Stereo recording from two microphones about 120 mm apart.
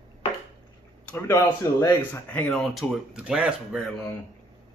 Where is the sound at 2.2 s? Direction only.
10° left (ahead or behind); by 3.8 s 5° right (ahead or behind).